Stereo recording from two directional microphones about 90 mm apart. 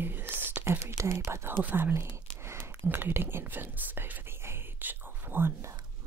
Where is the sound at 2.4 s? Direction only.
25° right (ahead or behind).